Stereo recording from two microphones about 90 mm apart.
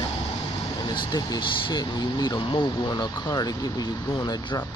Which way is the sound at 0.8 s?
55° left (ahead or behind).